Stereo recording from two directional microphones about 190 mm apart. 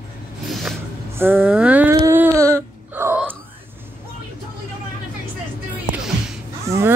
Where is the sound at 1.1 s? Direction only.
10° right (ahead or behind).